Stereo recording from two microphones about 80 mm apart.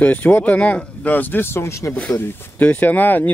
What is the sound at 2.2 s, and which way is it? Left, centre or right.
Speech, left.